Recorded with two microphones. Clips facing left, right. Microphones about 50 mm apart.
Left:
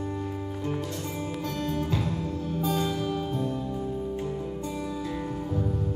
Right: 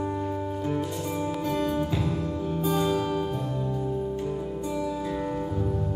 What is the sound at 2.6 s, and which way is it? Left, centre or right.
Music, centre.